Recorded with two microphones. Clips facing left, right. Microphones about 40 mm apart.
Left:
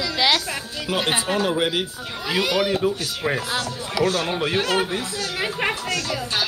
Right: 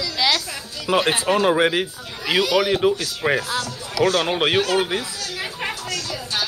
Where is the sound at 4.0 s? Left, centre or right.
Right.